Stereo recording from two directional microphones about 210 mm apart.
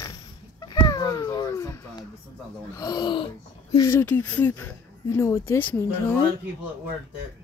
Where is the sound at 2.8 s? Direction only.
20° left (ahead or behind).